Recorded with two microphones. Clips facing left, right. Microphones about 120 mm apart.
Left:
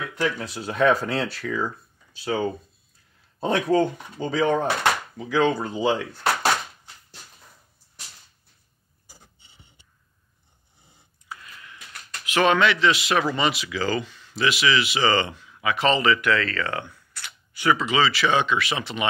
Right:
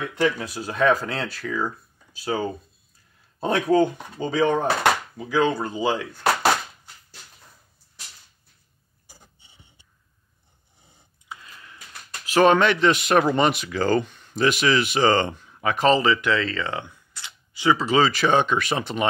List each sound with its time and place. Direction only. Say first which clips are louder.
0.2 s speech: right 3 dB; 5° right (ahead or behind)
3.7 s speech: right 2 dB; 15° right (ahead or behind); by 6.2 s centre (ahead or behind)
11.2 s a sound: even; 25° right (ahead or behind)
12.3 s speech: right 3 dB; 40° right (ahead or behind); by 17.8 s 20° right (ahead or behind)
17.8 s speech: right 2 dB; 45° right (ahead or behind)